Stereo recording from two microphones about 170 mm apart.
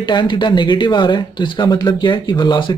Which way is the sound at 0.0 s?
25° left (ahead or behind).